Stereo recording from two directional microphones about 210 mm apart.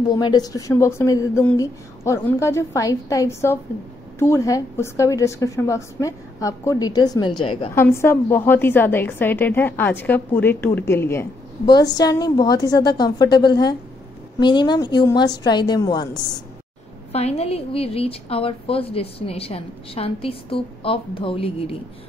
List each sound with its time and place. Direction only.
0.1 s a woman's voice: 20° left (ahead or behind)
7.7 s a woman's voice: 10° left (ahead or behind)
17.1 s a woman's voice: 30° left (ahead or behind)